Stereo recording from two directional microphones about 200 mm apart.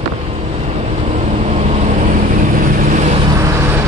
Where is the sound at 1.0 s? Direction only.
35° right (ahead or behind).